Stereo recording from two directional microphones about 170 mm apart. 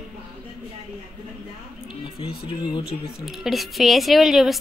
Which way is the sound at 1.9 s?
30° left (ahead or behind).